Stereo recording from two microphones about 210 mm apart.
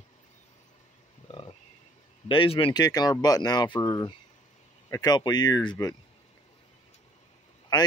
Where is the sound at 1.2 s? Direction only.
25° left (ahead or behind).